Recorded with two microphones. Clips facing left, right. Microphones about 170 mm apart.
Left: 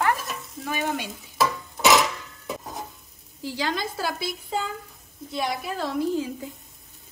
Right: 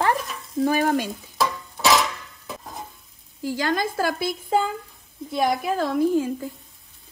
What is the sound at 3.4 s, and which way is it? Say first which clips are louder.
A woman's voice: right 4 dB; 50° right (ahead or behind).